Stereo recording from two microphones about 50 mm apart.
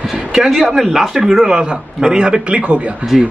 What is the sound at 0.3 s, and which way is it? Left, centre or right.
Speech, centre.